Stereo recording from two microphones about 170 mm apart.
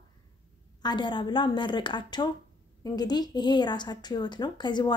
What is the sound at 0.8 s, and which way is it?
A woman's voice, 25° left (ahead or behind).